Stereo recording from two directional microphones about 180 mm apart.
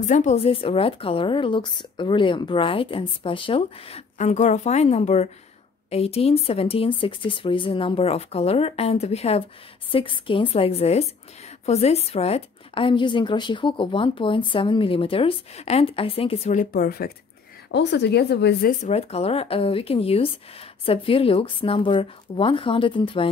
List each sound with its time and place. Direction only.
0.0 s a woman's voice: 40° left (ahead or behind)
17.6 s speech: 75° left (ahead or behind)
18.7 s a woman's voice: 40° left (ahead or behind)